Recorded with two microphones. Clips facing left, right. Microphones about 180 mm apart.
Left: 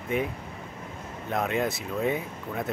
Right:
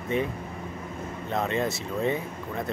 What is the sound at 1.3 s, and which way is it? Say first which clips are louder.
Speech: even; 5° left (ahead or behind).